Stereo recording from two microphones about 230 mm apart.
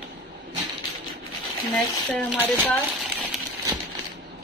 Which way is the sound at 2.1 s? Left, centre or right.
Centre.